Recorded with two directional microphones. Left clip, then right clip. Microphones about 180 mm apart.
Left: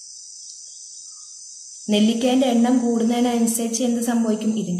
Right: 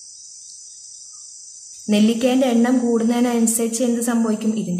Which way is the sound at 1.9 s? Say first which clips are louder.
Right 1 dB; 30° right (ahead or behind).